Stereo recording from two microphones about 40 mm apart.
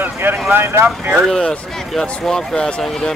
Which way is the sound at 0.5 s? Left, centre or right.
Right.